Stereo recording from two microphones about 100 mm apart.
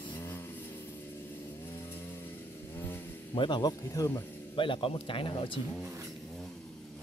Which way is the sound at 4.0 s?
30° left (ahead or behind).